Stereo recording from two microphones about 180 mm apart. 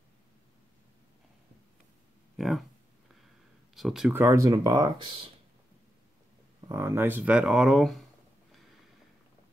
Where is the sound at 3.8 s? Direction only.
Centre (ahead or behind).